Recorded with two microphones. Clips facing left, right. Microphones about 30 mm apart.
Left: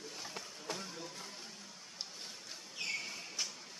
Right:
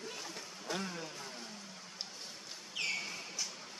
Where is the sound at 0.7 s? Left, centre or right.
Right.